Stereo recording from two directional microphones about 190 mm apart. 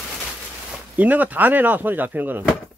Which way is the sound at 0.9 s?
10° right (ahead or behind).